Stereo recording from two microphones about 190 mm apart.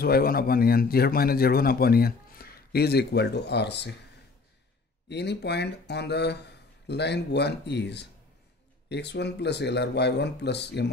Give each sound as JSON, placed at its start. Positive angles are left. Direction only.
{"t": 0.0, "sound": "a man's voice", "side_deg": 50}
{"t": 5.0, "sound": "speech", "side_deg": 65}